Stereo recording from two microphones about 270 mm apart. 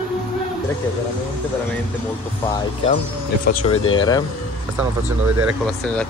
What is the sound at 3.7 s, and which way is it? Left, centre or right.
Speech, centre.